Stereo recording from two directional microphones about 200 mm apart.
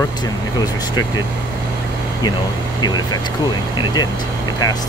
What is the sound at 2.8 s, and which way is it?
Speech, 20° left (ahead or behind).